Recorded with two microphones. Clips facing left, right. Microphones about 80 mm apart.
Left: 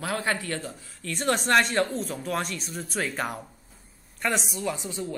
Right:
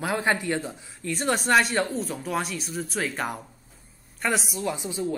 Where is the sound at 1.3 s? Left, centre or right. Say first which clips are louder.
Right 1 dB; centre.